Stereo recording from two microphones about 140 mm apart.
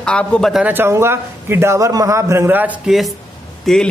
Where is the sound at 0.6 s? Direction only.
15° right (ahead or behind).